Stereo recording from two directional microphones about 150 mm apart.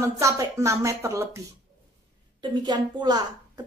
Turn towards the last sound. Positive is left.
turn(degrees=-30)  # may be behind; listen again after turning